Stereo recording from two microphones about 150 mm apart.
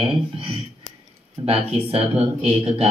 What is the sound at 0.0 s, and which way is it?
Speech, 35° right (ahead or behind).